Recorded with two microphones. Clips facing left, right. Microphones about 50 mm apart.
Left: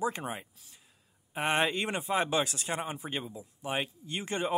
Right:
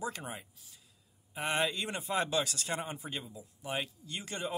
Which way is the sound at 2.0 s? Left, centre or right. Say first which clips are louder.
Left 2 dB; left.